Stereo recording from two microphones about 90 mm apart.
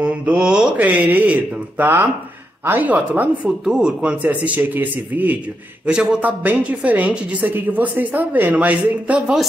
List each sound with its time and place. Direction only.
0.0 s a woman's voice: 15° right (ahead or behind)